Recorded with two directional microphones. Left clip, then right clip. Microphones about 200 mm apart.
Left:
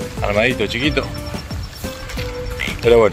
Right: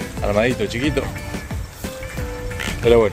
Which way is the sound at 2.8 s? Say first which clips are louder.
Left 2 dB; 5° left (ahead or behind).